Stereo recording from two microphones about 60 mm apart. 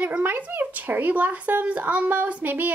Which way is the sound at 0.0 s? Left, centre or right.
Right.